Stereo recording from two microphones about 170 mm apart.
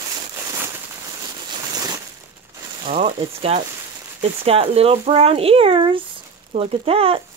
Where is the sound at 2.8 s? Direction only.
40° right (ahead or behind).